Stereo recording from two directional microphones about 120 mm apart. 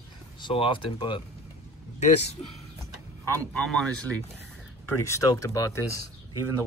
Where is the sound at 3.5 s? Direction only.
5° left (ahead or behind).